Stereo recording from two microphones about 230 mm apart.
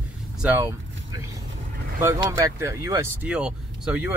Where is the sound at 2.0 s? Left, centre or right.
Centre.